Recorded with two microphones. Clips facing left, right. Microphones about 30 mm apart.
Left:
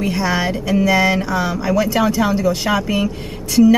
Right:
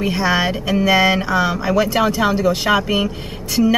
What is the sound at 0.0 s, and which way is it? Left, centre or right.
Speech, centre.